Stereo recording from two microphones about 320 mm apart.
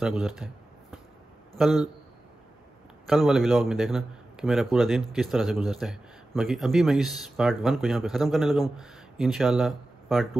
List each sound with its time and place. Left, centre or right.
0.0 s speech: centre
1.6 s speech: centre
3.1 s speech: centre